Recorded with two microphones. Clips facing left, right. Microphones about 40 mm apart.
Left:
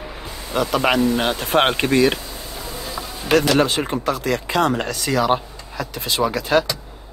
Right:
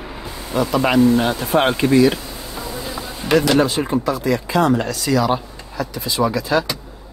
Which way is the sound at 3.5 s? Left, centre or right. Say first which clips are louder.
Right 2 dB; left.